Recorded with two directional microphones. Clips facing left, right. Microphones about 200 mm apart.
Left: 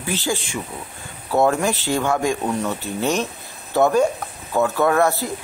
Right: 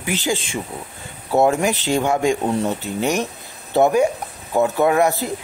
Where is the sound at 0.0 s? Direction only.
15° right (ahead or behind).